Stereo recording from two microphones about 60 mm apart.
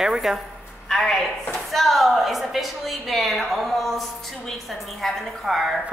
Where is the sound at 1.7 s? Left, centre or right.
Centre.